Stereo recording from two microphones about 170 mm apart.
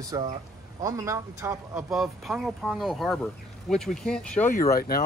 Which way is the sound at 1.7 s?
Centre (ahead or behind).